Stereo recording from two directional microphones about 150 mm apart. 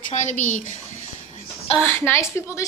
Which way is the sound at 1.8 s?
15° left (ahead or behind).